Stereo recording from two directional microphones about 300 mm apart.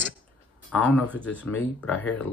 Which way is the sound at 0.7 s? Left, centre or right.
Centre.